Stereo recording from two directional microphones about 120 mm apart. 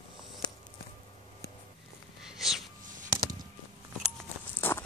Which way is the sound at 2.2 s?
5° right (ahead or behind).